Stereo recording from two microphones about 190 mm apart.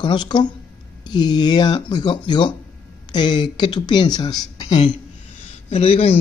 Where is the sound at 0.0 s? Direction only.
25° left (ahead or behind).